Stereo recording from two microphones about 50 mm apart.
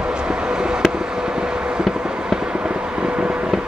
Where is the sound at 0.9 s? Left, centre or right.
Centre.